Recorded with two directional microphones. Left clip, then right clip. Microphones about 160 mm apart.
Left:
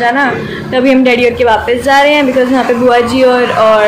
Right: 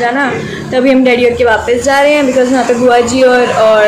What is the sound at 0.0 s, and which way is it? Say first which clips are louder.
Speech: left 2 dB; 5° right (ahead or behind).